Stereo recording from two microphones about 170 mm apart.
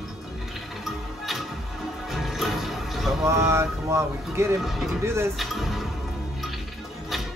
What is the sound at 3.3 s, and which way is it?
Speech, 15° right (ahead or behind).